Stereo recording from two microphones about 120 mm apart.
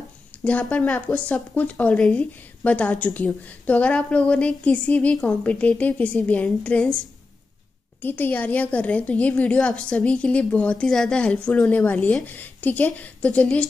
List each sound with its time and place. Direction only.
0.4 s speech: 10° left (ahead or behind)
8.0 s speech: 15° left (ahead or behind)